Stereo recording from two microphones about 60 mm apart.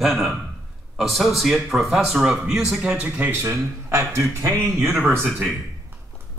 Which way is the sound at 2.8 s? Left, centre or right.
Right.